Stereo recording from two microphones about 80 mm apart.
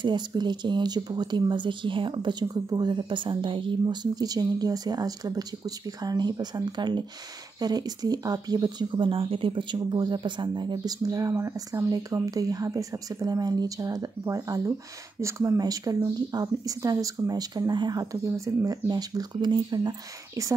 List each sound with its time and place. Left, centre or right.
0.0 s speech: right
7.5 s speech: right
11.1 s speech: right
15.6 s speech: right
18.1 s speech: right
18.9 s speech: right